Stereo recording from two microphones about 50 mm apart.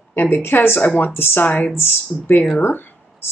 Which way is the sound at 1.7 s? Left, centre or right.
Left.